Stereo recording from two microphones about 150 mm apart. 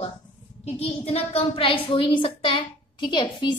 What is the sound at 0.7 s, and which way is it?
A woman's voice, 40° left (ahead or behind).